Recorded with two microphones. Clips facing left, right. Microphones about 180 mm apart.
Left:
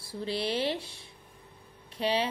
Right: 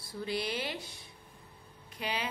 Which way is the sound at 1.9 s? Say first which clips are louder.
Left 8 dB; 30° left (ahead or behind).